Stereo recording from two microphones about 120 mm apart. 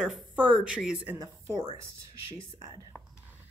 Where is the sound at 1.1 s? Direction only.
30° right (ahead or behind).